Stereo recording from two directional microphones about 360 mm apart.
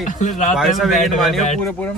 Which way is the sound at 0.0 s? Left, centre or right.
Centre.